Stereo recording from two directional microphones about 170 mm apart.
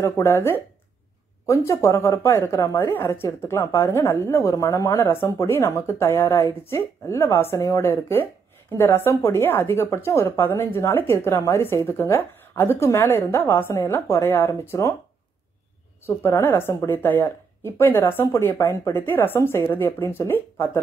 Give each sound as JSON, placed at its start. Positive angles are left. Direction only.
{"t": 0.0, "sound": "a woman's voice", "side_deg": 15}
{"t": 16.2, "sound": "a woman's voice", "side_deg": 15}